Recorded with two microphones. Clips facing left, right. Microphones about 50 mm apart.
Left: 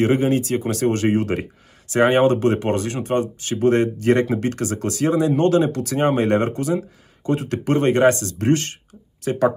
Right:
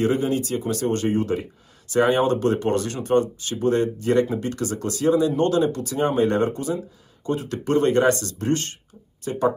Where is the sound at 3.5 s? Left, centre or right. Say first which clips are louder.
Left 4 dB; left.